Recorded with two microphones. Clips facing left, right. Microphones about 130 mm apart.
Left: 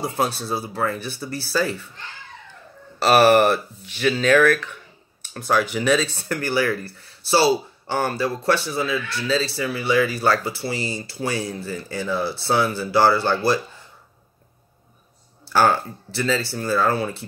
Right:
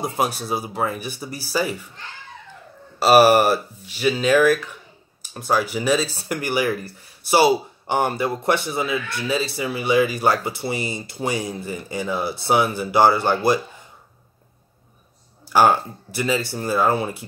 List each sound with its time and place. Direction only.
0.0 s speech: 15° right (ahead or behind)
3.0 s speech: 10° right (ahead or behind)
6.3 s speech: 15° right (ahead or behind)
15.4 s speech: 15° right (ahead or behind)